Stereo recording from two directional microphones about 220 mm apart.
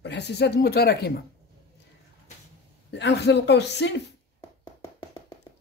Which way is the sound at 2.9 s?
50° left (ahead or behind).